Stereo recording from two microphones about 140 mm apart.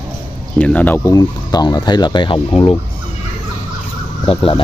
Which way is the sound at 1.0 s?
25° left (ahead or behind).